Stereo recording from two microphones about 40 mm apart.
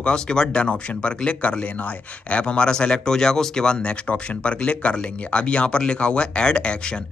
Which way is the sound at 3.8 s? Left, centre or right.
Left.